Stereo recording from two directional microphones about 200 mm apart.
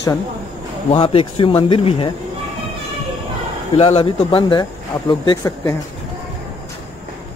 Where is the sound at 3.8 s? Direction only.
30° left (ahead or behind).